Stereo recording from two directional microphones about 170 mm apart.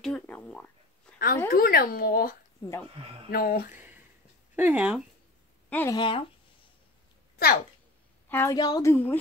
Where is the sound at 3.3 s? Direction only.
60° left (ahead or behind).